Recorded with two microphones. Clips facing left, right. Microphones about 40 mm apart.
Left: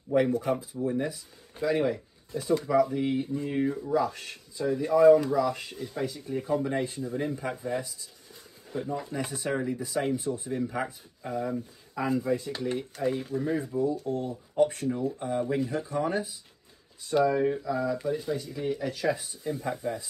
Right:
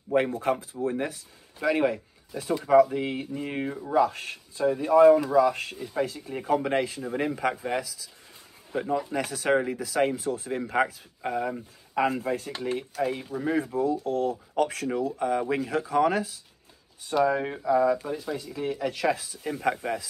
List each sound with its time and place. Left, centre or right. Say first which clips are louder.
0.1 s speech: even; right
0.8 s speech: right 1 dB; right
3.3 s speech: left 2 dB; right
8.7 s speech: right 3 dB; right
9.1 s speech: right 7 dB; right
10.6 s speech: right 5 dB; right
13.2 s speech: left 1 dB; centre
13.6 s speech: right 3 dB; right
17.1 s speech: even; right